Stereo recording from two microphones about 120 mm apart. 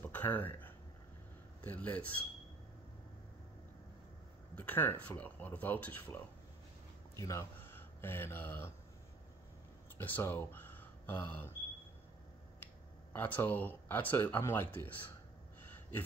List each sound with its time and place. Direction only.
0.0 s a sound: 15° left (ahead or behind)
1.6 s speech: 10° left (ahead or behind)
4.6 s speech: 15° left (ahead or behind)
7.2 s speech: 25° left (ahead or behind)
9.9 s speech: 15° left (ahead or behind)
13.1 s speech: 15° left (ahead or behind)